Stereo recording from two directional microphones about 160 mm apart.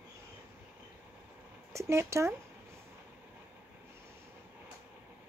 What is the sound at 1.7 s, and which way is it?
Speech, 15° right (ahead or behind).